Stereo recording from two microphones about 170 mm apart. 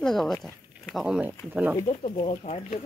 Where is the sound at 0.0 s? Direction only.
Centre (ahead or behind).